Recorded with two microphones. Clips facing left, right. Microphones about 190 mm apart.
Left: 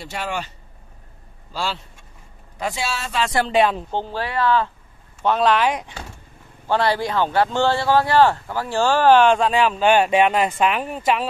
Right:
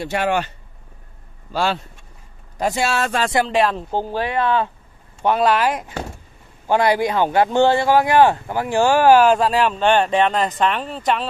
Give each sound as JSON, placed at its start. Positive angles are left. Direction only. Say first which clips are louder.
{"t": 0.0, "sound": "speech", "louder": "right 7 dB", "side_deg": -60}
{"t": 1.5, "sound": "speech", "louder": "right 6 dB", "side_deg": -60}
{"t": 2.6, "sound": "speech", "louder": "right 6 dB", "side_deg": -50}
{"t": 3.4, "sound": "speech", "louder": "left 1 dB", "side_deg": 0}
{"t": 4.0, "sound": "speech", "louder": "right 2 dB", "side_deg": -15}
{"t": 5.2, "sound": "speech", "louder": "right 1 dB", "side_deg": -10}
{"t": 6.7, "sound": "speech", "louder": "right 3 dB", "side_deg": -15}